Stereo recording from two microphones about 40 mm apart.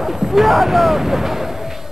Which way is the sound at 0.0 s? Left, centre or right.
Centre.